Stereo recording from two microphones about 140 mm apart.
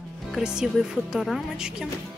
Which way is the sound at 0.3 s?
5° right (ahead or behind).